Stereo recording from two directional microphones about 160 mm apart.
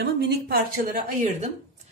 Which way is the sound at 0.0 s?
75° right (ahead or behind).